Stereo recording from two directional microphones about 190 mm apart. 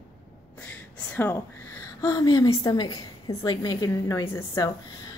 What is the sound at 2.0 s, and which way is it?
A woman's voice, 20° left (ahead or behind).